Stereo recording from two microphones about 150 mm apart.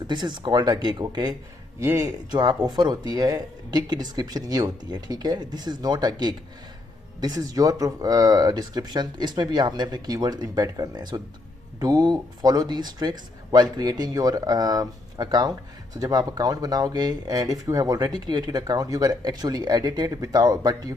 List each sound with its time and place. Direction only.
0.0 s speech: 30° right (ahead or behind)
1.8 s speech: 15° right (ahead or behind)
2.3 s speech: 30° right (ahead or behind)